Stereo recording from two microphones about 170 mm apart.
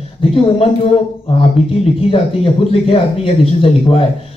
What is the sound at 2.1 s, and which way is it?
Speech, 35° left (ahead or behind).